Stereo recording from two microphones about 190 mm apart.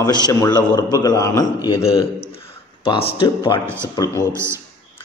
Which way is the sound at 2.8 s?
30° left (ahead or behind).